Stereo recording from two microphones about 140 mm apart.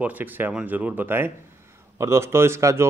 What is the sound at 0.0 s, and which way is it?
Speech, 10° right (ahead or behind).